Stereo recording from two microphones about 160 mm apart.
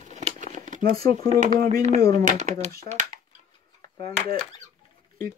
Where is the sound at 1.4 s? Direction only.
50° right (ahead or behind).